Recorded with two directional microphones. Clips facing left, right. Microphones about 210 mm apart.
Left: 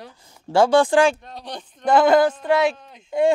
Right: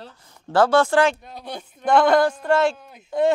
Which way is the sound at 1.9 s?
5° left (ahead or behind).